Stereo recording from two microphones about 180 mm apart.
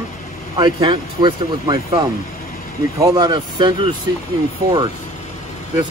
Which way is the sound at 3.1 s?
25° right (ahead or behind).